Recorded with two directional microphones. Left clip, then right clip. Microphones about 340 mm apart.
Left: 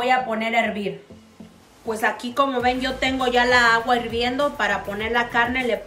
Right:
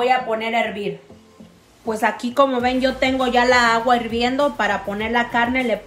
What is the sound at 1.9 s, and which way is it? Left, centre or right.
Speech, centre.